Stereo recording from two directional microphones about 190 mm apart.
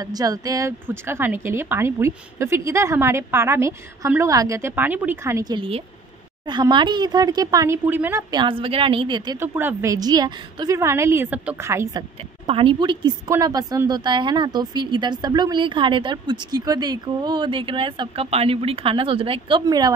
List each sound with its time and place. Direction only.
0.0 s a woman's voice: 20° right (ahead or behind)
12.4 s a woman's voice: 30° right (ahead or behind)